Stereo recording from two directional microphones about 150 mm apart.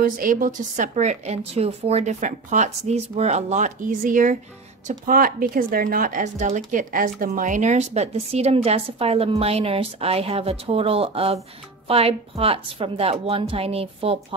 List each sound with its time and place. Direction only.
0.0 s a woman's voice: 65° right (ahead or behind); by 14.1 s 40° right (ahead or behind)